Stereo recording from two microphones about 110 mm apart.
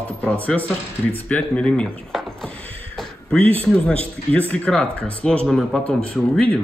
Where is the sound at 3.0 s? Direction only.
10° left (ahead or behind).